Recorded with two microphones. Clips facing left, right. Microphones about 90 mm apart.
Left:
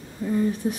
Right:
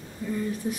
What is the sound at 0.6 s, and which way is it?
Speech, 25° left (ahead or behind).